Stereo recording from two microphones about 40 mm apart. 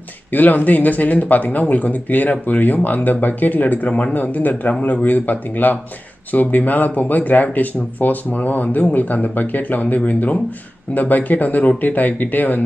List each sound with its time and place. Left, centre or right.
0.3 s speech: left